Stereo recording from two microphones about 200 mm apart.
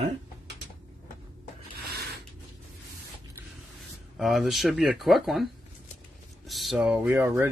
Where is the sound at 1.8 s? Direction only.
55° right (ahead or behind).